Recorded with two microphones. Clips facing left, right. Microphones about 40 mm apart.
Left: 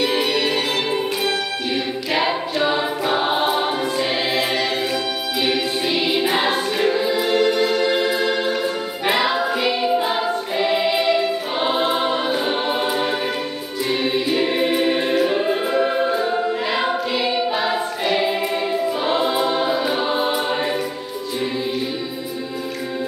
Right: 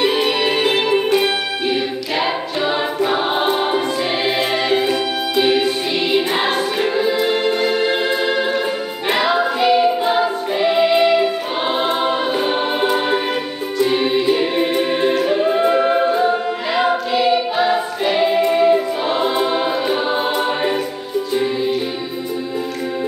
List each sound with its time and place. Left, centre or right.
0.2 s music: centre
1.1 s music: centre
2.1 s choir: centre
4.6 s music: centre
9.4 s choir: centre
15.7 s choir: centre